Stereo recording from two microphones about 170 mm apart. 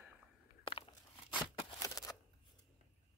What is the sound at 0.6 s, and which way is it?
Biting, 30° left (ahead or behind).